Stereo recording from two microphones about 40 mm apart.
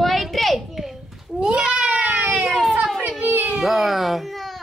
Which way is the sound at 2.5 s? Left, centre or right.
Centre.